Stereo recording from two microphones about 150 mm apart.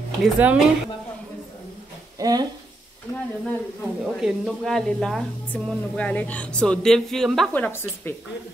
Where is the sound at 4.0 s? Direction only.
5° right (ahead or behind).